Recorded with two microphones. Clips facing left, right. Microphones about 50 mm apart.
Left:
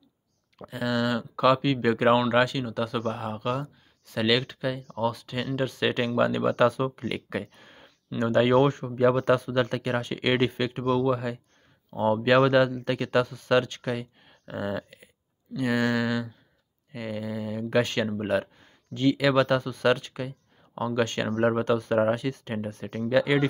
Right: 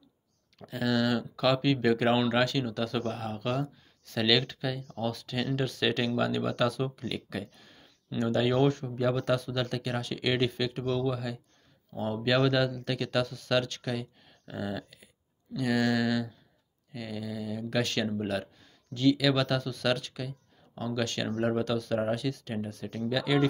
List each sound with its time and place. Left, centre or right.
0.6 s speech: centre; by 23.4 s left